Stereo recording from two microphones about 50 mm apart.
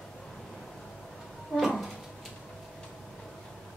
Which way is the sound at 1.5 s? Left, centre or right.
Centre.